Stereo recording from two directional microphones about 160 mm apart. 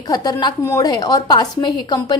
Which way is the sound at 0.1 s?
25° left (ahead or behind).